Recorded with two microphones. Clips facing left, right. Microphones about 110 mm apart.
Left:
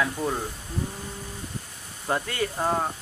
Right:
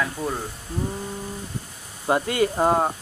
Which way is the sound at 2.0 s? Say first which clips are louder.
Right 5 dB; 10° right (ahead or behind).